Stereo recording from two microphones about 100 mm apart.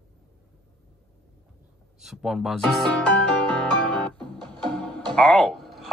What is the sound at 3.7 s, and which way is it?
Music, 10° left (ahead or behind).